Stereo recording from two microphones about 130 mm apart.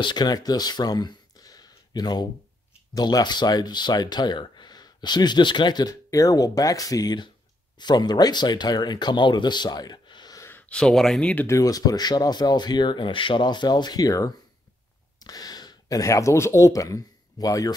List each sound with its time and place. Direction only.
0.0 s speech: 35° left (ahead or behind)
10.5 s speech: 5° left (ahead or behind)
11.4 s speech: 25° left (ahead or behind)